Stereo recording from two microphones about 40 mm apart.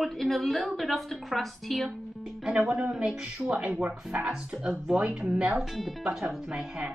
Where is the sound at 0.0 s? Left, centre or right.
Centre.